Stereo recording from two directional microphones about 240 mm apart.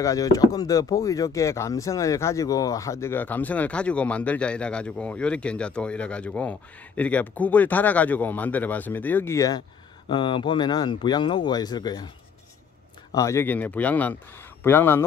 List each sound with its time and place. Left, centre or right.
0.0 s speech: centre
13.1 s speech: centre